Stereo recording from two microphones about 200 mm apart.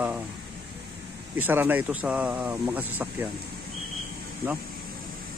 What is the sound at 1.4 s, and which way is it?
Speech, 10° right (ahead or behind).